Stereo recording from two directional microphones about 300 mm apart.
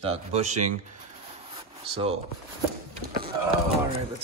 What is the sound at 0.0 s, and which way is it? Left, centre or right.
Speech, right.